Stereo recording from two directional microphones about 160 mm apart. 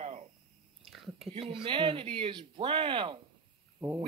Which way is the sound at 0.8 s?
Centre (ahead or behind).